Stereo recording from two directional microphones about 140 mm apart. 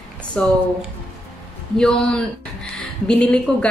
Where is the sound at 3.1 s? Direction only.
5° left (ahead or behind).